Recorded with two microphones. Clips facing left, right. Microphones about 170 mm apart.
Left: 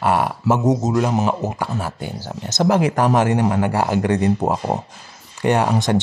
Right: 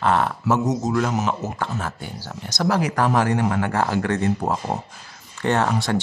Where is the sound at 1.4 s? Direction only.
15° left (ahead or behind).